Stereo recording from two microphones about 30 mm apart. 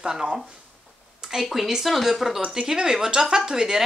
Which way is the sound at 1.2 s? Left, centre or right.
Right.